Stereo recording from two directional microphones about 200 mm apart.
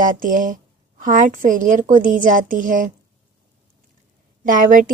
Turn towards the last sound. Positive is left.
turn(degrees=-40)  # may be behind; listen again after turning